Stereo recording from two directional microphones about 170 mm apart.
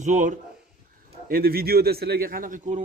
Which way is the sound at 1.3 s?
60° right (ahead or behind).